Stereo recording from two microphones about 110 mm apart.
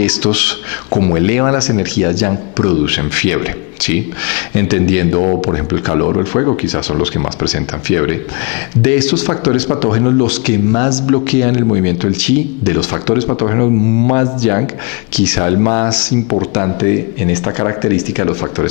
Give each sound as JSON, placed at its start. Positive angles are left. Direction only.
{"t": 0.0, "sound": "speech", "side_deg": 15}
{"t": 5.2, "sound": "speech", "side_deg": 35}
{"t": 5.7, "sound": "speech", "side_deg": 25}
{"t": 15.5, "sound": "speech", "side_deg": 25}